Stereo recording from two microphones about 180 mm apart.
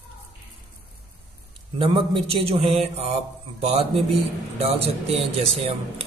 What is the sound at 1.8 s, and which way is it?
Speech, 30° right (ahead or behind).